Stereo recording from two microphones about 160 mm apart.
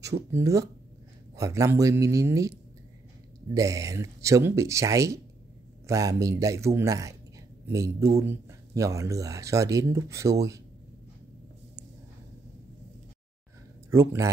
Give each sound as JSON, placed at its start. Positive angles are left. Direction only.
{"t": 0.3, "sound": "speech", "side_deg": -20}
{"t": 13.8, "sound": "speech", "side_deg": -20}